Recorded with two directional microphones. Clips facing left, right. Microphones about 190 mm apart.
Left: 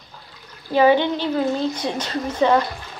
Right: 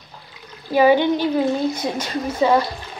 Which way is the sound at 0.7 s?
10° right (ahead or behind).